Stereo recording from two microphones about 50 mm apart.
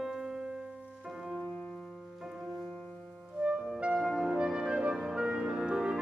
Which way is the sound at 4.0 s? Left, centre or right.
Centre.